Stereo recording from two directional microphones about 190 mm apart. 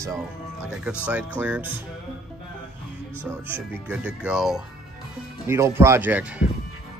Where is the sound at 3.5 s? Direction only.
10° right (ahead or behind).